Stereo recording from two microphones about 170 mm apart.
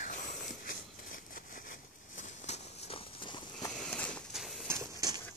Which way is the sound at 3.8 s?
5° left (ahead or behind).